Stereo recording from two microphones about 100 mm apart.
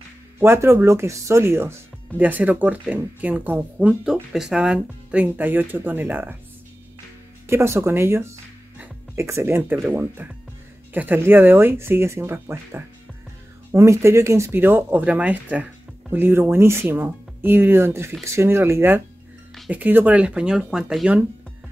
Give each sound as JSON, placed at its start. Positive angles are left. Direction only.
{"t": 0.4, "sound": "speech", "side_deg": -25}
{"t": 7.4, "sound": "speech", "side_deg": -25}